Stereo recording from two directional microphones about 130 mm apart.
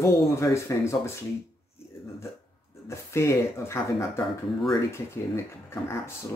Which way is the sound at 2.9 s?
20° left (ahead or behind).